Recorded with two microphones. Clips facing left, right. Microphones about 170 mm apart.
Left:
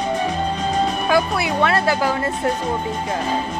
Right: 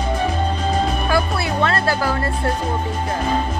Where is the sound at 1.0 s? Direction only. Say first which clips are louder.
Left 2 dB; 15° left (ahead or behind).